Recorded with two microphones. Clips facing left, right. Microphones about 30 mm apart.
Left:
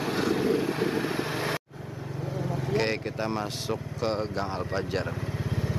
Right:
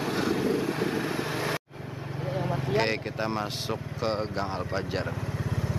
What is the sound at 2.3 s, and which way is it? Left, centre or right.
Vehicle, right.